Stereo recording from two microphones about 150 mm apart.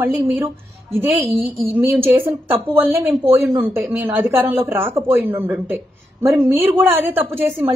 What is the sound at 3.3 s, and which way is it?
Speech, 15° right (ahead or behind).